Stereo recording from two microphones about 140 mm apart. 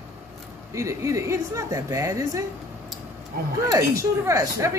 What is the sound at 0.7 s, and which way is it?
Speech, 20° right (ahead or behind).